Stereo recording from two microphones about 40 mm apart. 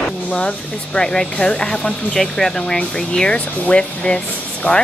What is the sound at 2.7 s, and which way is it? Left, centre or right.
Speech, left.